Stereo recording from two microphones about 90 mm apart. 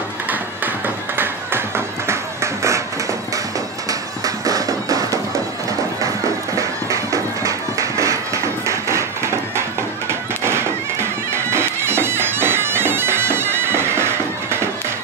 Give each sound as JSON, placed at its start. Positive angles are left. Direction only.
{"t": 0.8, "sound": "music", "side_deg": -25}
{"t": 4.5, "sound": "music", "side_deg": -40}
{"t": 6.5, "sound": "music", "side_deg": -35}
{"t": 8.0, "sound": "a sound", "side_deg": -35}
{"t": 10.4, "sound": "music", "side_deg": -30}
{"t": 11.5, "sound": "bagpipes", "side_deg": -25}